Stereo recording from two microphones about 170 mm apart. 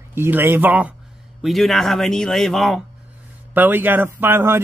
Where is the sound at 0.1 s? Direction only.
15° right (ahead or behind).